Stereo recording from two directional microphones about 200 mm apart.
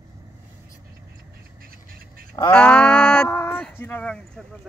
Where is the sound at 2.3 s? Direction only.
15° left (ahead or behind).